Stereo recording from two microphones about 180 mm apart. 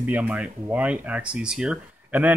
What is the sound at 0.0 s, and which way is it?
Speech, 10° right (ahead or behind).